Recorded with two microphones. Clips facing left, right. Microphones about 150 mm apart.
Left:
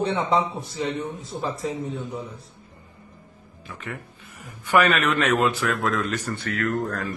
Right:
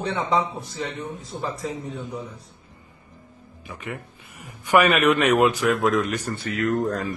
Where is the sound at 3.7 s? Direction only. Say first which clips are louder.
Right 2 dB; 15° right (ahead or behind).